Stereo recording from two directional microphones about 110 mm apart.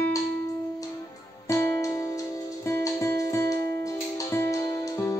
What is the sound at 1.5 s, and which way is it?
Music, 25° left (ahead or behind).